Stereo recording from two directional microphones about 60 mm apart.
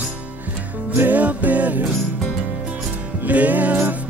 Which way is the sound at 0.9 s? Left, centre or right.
Right.